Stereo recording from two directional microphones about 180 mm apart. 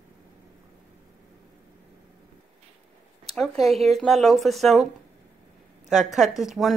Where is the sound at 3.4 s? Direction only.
Centre (ahead or behind).